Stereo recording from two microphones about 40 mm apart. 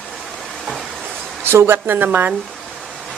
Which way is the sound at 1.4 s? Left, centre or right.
Right.